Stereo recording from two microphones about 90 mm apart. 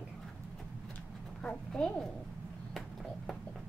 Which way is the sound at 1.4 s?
10° left (ahead or behind).